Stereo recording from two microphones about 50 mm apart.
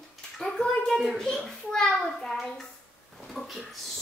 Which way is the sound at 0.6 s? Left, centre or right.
Centre.